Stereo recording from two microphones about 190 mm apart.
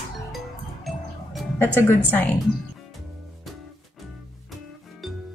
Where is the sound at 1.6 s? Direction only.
10° left (ahead or behind).